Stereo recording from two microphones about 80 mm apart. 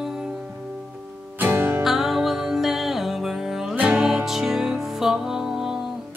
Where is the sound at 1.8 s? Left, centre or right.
Centre.